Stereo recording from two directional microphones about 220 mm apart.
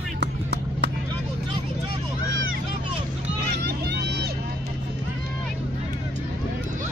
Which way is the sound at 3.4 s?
45° right (ahead or behind).